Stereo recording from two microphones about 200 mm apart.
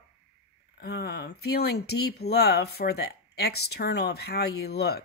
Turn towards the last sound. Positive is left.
turn(degrees=55)  # may be behind; listen again after turning